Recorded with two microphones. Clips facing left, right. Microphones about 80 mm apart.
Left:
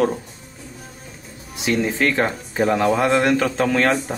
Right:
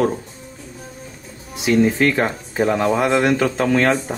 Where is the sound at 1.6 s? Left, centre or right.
Centre.